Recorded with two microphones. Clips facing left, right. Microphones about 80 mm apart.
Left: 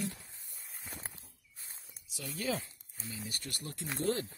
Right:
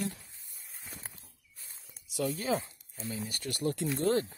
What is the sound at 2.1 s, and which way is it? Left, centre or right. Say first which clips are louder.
Speech: right 9 dB; right.